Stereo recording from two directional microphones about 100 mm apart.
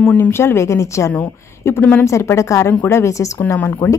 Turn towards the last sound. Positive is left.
turn(degrees=25)  # may be behind; listen again after turning